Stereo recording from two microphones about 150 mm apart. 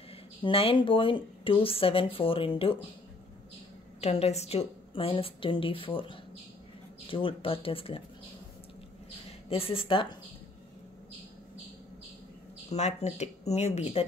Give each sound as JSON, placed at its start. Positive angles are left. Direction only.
{"t": 0.4, "sound": "speech", "side_deg": 40}
{"t": 4.0, "sound": "speech", "side_deg": 45}
{"t": 9.5, "sound": "speech", "side_deg": 40}
{"t": 12.6, "sound": "speech", "side_deg": 50}